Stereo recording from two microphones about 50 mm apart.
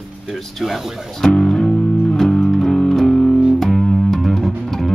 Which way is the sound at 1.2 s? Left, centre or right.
Centre.